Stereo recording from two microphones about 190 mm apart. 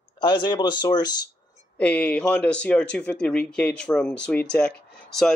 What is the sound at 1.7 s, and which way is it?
Speech, 5° left (ahead or behind).